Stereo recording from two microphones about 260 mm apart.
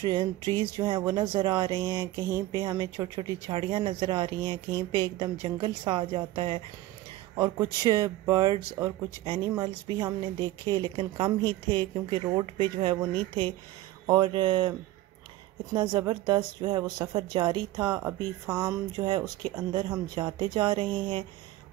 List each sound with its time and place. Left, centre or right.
0.0 s a woman's voice: centre